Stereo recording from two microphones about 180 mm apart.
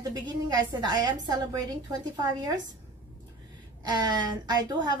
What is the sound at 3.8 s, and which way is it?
A woman's voice, 20° right (ahead or behind).